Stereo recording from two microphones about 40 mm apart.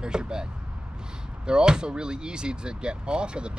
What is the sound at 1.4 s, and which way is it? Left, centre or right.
Speech, right.